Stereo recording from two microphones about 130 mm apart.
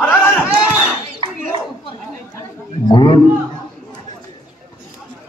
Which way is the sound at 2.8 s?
35° left (ahead or behind).